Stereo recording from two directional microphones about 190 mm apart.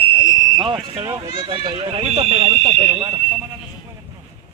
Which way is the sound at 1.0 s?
20° right (ahead or behind).